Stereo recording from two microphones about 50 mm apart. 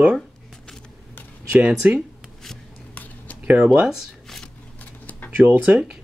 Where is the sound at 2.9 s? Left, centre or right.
Left.